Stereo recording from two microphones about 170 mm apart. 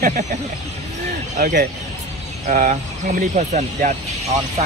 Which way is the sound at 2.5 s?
50° right (ahead or behind).